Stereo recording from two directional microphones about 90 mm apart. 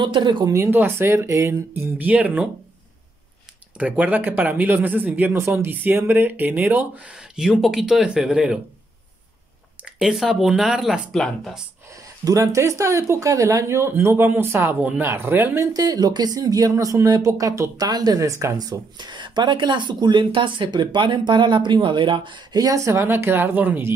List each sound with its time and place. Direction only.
0.0 s speech: 60° right (ahead or behind)
0.5 s speech: 30° right (ahead or behind)
1.8 s speech: 20° right (ahead or behind)
3.7 s speech: 15° right (ahead or behind)
7.2 s speech: 5° right (ahead or behind)
9.9 s speech: 5° right (ahead or behind)
12.3 s speech: 35° right (ahead or behind)
15.7 s speech: 50° right (ahead or behind); by 22.6 s 65° right (ahead or behind)
22.6 s speech: 40° right (ahead or behind); by 23.9 s 20° right (ahead or behind)